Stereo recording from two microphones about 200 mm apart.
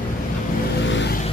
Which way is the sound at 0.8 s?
65° left (ahead or behind).